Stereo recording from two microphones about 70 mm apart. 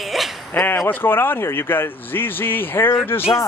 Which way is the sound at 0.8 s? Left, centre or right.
Left.